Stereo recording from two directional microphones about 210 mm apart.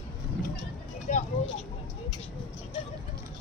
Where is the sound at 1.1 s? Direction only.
35° left (ahead or behind).